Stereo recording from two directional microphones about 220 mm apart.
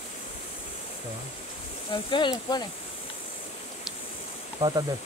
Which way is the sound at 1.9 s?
20° left (ahead or behind).